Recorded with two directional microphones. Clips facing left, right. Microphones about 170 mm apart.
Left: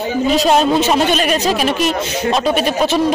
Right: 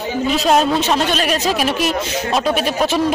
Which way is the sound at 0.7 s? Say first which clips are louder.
Left 3 dB; 5° left (ahead or behind).